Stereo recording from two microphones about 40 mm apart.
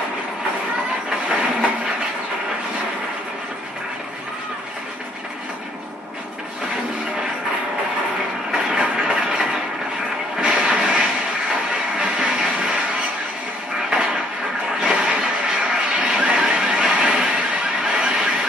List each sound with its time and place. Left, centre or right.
8.5 s train: centre
10.4 s vehicle: right
13.8 s a sound: centre